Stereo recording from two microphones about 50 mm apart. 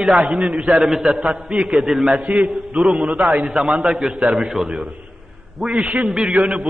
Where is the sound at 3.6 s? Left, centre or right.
Centre.